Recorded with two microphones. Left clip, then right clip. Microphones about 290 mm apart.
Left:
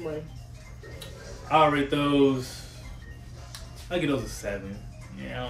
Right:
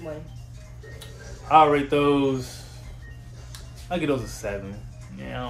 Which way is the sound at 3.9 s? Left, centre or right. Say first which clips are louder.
Right 2 dB; centre.